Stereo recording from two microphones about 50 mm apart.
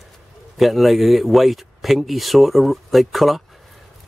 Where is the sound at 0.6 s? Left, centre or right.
Centre.